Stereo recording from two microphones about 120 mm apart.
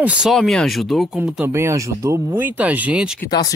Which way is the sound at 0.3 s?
5° left (ahead or behind).